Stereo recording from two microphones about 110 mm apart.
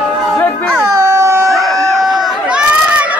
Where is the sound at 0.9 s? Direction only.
30° right (ahead or behind).